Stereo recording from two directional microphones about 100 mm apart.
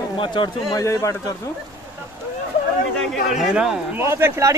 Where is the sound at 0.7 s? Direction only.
35° left (ahead or behind).